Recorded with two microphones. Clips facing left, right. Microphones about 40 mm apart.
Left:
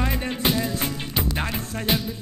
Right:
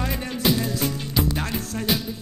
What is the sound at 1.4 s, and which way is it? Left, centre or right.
Music, centre.